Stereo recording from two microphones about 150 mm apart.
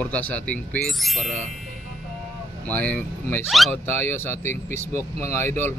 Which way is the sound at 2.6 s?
10° left (ahead or behind).